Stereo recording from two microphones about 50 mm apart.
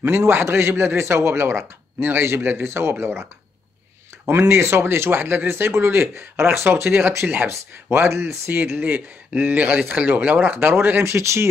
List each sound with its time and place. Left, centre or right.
0.0 s speech: right
4.3 s speech: right
8.7 s speech: right
11.1 s speech: right